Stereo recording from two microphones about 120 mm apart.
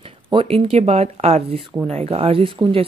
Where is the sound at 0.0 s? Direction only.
45° right (ahead or behind).